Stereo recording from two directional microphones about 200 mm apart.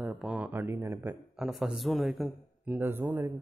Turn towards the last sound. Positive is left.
turn(degrees=-10)  # may be behind; listen again after turning